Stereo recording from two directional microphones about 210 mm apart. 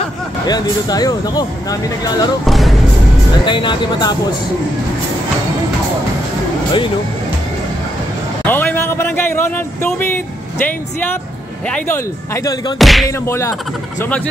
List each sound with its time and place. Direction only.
0.5 s speech: 20° left (ahead or behind)
2.4 s music: centre (ahead or behind)
3.4 s speech: 20° left (ahead or behind)
8.5 s speech: 10° left (ahead or behind)
12.7 s music: centre (ahead or behind)
13.3 s speech: 15° left (ahead or behind)